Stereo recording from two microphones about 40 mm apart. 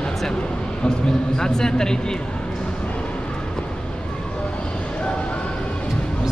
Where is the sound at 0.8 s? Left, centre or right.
Centre.